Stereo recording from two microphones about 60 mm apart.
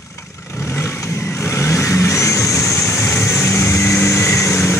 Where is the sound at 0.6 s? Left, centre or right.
Left.